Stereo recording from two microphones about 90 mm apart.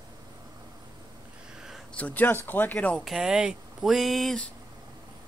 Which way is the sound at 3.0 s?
5° right (ahead or behind).